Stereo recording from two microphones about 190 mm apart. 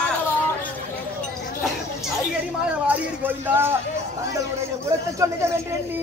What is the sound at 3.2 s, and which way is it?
Speech, 10° right (ahead or behind).